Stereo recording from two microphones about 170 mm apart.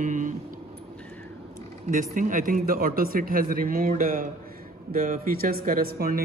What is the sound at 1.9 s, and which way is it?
Speech, 50° right (ahead or behind).